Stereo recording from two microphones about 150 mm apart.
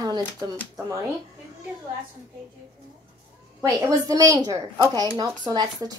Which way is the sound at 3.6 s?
20° right (ahead or behind).